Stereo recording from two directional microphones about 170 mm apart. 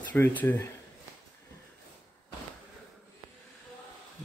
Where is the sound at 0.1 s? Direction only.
10° left (ahead or behind).